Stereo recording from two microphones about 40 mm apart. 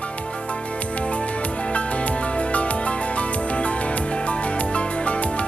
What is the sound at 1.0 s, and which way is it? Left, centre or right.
Music, left.